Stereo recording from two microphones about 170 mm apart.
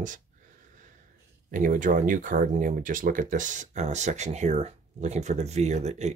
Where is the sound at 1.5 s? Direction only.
50° right (ahead or behind).